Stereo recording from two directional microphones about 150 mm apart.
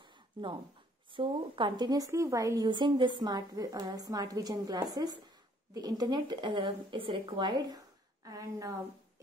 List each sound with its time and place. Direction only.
0.4 s a woman's voice: 30° right (ahead or behind)